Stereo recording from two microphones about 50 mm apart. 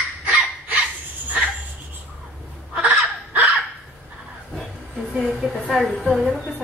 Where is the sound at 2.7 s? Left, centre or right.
Right.